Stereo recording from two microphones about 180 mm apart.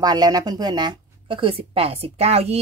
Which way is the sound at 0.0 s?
20° right (ahead or behind).